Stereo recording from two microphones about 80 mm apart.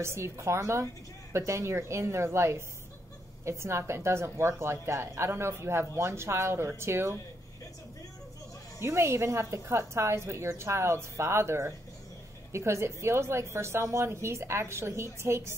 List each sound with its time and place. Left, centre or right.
0.0 s a woman's voice: right
8.8 s a woman's voice: right